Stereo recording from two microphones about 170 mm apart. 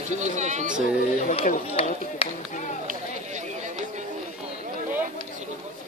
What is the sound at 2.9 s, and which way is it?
Chatter, 45° right (ahead or behind).